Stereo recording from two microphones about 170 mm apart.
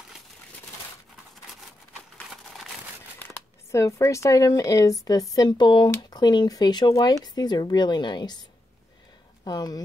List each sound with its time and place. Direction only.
3.7 s speech: 20° left (ahead or behind)
9.4 s speech: 25° left (ahead or behind)